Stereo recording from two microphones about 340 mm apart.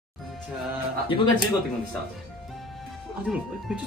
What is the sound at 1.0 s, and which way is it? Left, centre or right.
Speech, centre.